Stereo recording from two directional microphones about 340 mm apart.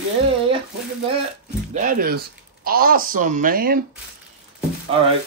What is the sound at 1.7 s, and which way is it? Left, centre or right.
Speech, right.